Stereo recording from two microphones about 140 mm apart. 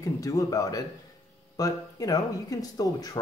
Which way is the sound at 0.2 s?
25° left (ahead or behind).